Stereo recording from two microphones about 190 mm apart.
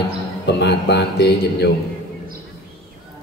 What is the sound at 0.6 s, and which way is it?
A man's voice, 65° left (ahead or behind).